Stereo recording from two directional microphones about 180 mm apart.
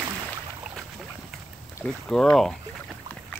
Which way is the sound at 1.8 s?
10° left (ahead or behind).